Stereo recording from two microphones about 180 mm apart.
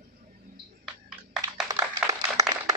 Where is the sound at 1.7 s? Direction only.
20° right (ahead or behind).